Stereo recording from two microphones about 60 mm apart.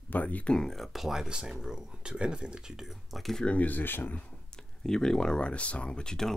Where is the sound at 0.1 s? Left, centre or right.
Left.